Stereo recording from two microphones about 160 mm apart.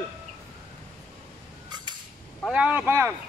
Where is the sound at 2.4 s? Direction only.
5° right (ahead or behind).